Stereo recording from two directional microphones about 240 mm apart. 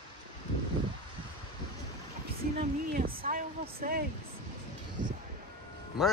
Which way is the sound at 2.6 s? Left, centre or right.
Right.